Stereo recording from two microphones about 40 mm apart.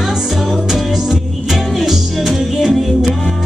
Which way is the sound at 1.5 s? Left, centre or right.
Centre.